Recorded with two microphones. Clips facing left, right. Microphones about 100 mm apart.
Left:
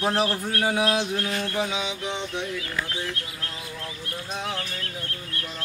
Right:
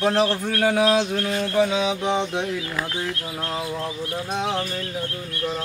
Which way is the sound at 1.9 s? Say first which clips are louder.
Right 8 dB; 35° right (ahead or behind).